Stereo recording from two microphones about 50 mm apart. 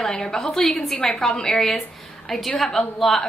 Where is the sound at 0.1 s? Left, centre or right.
Centre.